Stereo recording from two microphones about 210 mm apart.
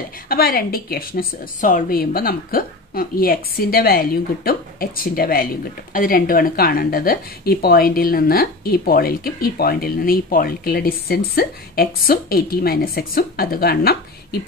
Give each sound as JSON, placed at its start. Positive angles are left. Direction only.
{"t": 0.3, "sound": "a woman's voice", "side_deg": 45}